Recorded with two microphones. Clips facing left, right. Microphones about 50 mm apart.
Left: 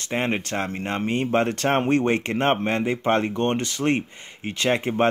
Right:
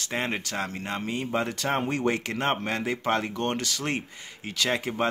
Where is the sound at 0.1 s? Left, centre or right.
Left.